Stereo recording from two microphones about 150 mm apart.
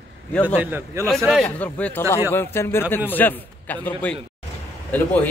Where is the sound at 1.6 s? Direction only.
10° left (ahead or behind).